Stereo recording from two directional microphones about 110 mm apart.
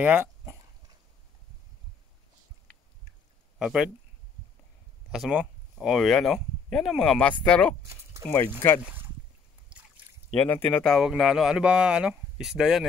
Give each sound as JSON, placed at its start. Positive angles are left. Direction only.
{"t": 0.0, "sound": "dog", "side_deg": -15}
{"t": 3.5, "sound": "speech", "side_deg": -5}
{"t": 5.1, "sound": "speech", "side_deg": -5}
{"t": 10.4, "sound": "speech", "side_deg": 15}
{"t": 10.9, "sound": "speech", "side_deg": 0}